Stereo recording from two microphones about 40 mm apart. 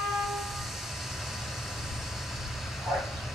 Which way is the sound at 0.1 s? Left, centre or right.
Centre.